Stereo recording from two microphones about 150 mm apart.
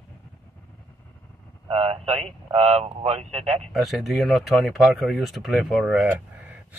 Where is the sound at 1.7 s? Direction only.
40° right (ahead or behind).